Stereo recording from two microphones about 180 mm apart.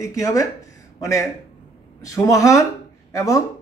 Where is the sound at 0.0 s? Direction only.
15° left (ahead or behind).